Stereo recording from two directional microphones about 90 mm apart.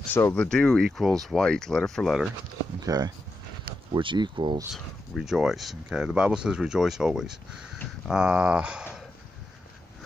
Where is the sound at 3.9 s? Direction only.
65° right (ahead or behind).